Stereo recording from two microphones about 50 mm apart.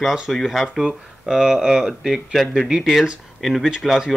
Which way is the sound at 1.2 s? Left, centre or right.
Centre.